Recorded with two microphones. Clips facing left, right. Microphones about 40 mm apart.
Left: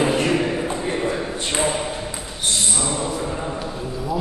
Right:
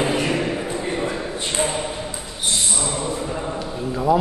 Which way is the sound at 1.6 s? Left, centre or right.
Centre.